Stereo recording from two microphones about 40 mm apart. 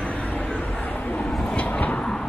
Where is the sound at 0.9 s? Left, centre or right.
Left.